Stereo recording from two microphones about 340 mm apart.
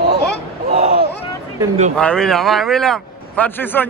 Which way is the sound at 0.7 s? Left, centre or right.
Right.